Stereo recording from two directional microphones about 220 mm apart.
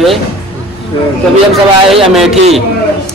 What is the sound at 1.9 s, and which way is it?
Speech, centre (ahead or behind).